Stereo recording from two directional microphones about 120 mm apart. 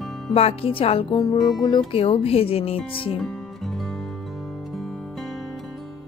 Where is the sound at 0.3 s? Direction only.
55° left (ahead or behind).